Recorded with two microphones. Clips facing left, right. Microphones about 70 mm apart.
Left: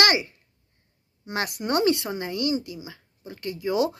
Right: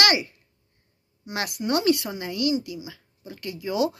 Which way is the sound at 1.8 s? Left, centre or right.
Left.